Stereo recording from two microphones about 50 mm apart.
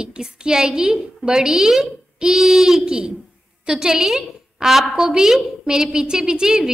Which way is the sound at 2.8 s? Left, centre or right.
Centre.